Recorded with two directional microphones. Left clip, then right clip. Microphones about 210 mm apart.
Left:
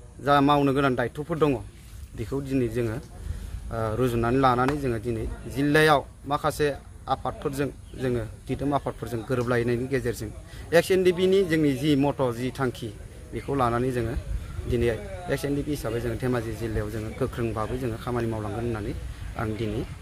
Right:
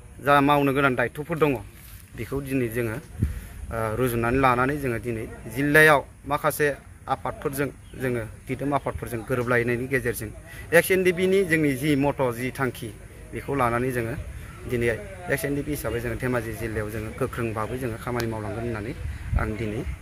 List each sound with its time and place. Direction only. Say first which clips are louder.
0.2 s a man's voice: right 1 dB; 10° left (ahead or behind)